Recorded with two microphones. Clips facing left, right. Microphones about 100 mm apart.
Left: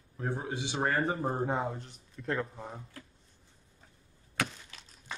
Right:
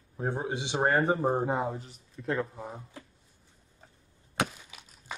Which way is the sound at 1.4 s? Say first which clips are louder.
Right 2 dB; 5° right (ahead or behind).